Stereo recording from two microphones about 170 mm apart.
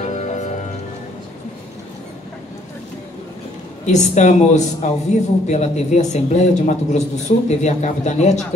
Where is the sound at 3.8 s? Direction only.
45° left (ahead or behind).